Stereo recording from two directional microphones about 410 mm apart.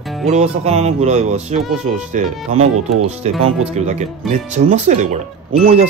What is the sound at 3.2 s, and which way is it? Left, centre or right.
Speech, centre.